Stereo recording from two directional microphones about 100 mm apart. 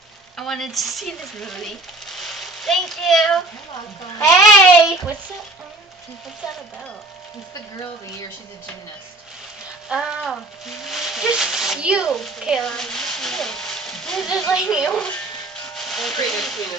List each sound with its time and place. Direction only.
0.4 s speech: centre (ahead or behind)
4.2 s speech: 30° left (ahead or behind)
9.8 s frying: 5° right (ahead or behind)
10.2 s speech: centre (ahead or behind)
12.1 s speech: centre (ahead or behind)
14.5 s speech: 5° right (ahead or behind)
14.9 s a sound: 10° left (ahead or behind)
16.3 s speech: centre (ahead or behind)